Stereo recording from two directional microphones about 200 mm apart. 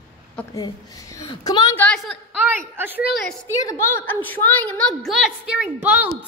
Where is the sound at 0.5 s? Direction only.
15° left (ahead or behind).